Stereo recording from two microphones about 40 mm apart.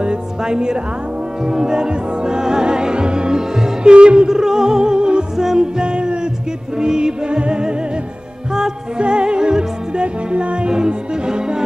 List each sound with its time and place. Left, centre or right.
0.0 s music: right
4.3 s music: centre